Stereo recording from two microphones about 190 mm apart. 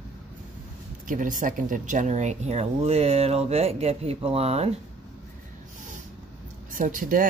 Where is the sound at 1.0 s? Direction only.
45° right (ahead or behind).